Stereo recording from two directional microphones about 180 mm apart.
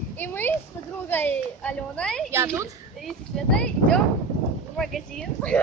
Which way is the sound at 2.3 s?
15° right (ahead or behind).